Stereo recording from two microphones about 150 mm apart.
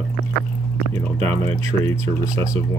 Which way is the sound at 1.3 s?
15° left (ahead or behind).